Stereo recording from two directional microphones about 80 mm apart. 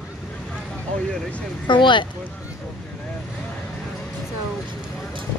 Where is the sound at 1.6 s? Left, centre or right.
Left.